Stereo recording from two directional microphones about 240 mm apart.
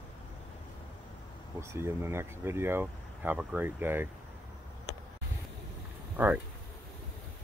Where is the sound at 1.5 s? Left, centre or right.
Centre.